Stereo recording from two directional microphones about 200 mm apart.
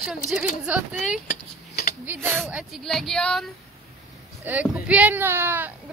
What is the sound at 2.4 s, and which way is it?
Speech, centre (ahead or behind).